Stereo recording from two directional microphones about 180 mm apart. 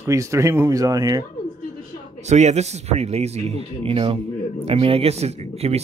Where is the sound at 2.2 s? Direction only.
40° right (ahead or behind).